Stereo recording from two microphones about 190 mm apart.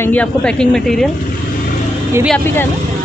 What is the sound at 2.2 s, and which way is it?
Speech, 10° left (ahead or behind).